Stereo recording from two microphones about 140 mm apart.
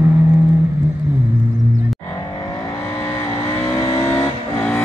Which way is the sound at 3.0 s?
20° left (ahead or behind).